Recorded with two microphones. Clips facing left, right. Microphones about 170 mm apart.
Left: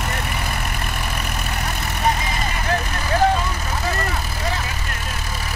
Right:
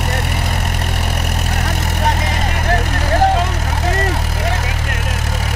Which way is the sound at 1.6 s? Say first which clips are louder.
Right 2 dB; 75° right (ahead or behind).